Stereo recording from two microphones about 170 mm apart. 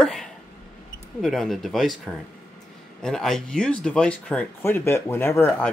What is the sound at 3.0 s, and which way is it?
Speech, 5° left (ahead or behind).